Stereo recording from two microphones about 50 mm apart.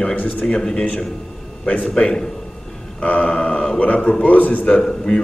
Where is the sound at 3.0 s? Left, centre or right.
Left.